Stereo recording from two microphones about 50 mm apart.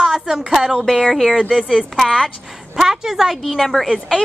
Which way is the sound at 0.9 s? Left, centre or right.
Centre.